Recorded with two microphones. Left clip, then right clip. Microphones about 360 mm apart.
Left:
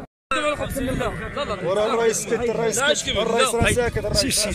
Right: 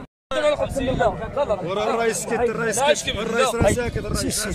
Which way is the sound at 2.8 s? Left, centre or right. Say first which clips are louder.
Even; right.